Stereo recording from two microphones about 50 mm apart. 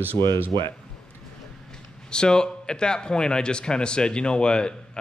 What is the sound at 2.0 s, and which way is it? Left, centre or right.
A man's voice, centre.